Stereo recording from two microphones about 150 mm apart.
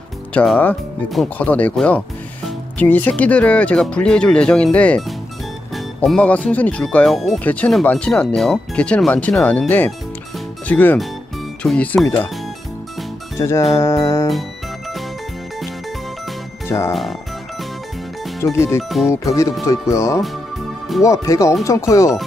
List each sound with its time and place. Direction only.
0.3 s speech: 10° left (ahead or behind)
6.0 s speech: 10° left (ahead or behind)
13.4 s speech: 20° left (ahead or behind)
16.6 s speech: 20° left (ahead or behind)
18.4 s speech: 20° left (ahead or behind)
18.8 s speech: centre (ahead or behind)
19.0 s speech: 20° left (ahead or behind)